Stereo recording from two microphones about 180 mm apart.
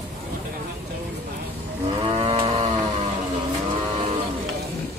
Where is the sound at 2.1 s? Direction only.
30° right (ahead or behind).